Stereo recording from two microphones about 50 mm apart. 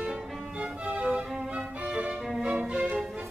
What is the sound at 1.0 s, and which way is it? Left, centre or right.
Music, centre.